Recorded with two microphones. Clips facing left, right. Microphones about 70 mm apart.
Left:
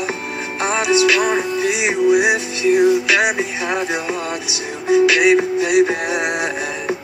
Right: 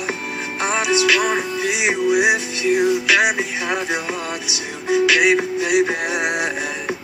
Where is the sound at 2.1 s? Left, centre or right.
Centre.